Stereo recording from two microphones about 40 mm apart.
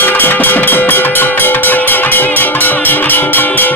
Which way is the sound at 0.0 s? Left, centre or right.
Left.